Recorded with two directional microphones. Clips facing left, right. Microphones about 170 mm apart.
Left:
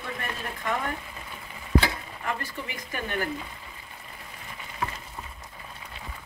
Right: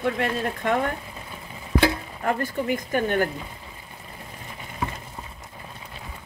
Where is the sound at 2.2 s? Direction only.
45° right (ahead or behind).